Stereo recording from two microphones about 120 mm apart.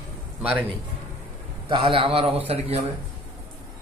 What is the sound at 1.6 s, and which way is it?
A man's voice, 45° right (ahead or behind).